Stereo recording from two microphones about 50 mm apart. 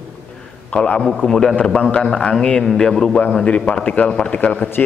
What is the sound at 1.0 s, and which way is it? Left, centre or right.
A man's voice, centre.